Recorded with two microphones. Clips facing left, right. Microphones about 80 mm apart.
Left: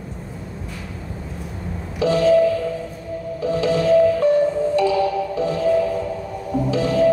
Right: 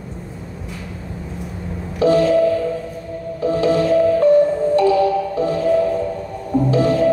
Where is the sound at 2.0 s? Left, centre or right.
Right.